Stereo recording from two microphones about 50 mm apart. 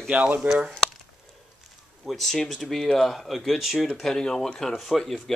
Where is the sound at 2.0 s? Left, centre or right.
Centre.